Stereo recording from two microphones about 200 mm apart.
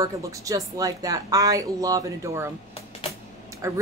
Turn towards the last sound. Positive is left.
turn(degrees=-15)  # may be behind; listen again after turning